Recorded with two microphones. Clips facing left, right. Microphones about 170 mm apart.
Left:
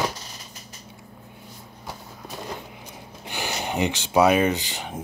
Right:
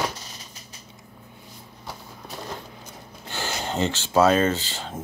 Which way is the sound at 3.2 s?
15° left (ahead or behind).